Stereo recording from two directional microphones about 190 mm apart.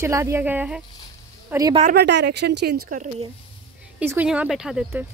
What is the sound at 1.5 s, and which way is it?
Speech, 20° right (ahead or behind).